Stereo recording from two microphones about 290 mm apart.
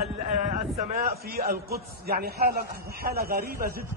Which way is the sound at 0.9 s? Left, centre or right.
Right.